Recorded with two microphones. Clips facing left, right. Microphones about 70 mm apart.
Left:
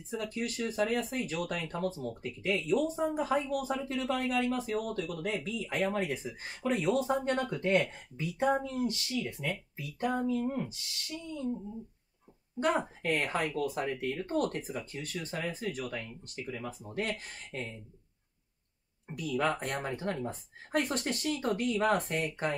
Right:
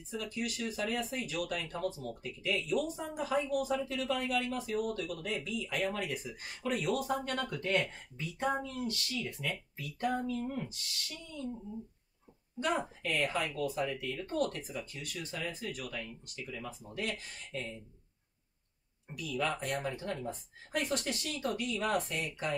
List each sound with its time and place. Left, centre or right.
0.1 s speech: left; by 10.8 s centre
12.5 s speech: left
19.0 s speech: left